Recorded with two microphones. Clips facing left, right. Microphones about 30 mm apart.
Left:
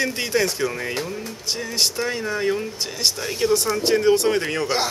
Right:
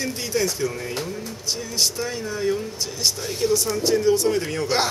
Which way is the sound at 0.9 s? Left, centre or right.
Centre.